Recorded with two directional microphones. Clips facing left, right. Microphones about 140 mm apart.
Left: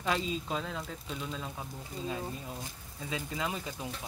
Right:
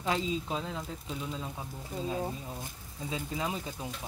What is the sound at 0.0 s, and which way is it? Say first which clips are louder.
Speech: right 1 dB; 20° right (ahead or behind).